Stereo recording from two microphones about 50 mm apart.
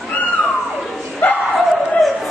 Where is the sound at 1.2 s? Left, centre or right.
Left.